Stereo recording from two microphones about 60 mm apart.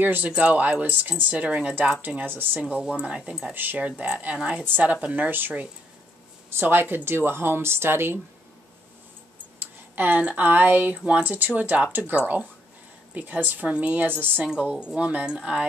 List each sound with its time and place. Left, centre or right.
0.0 s speech: right
2.7 s speech: centre
3.5 s speech: right
3.8 s speech: centre
5.0 s speech: right
6.5 s speech: right
9.6 s speech: right
11.3 s speech: right
14.5 s speech: centre